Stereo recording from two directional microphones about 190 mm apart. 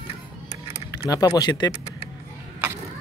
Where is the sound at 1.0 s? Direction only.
20° left (ahead or behind).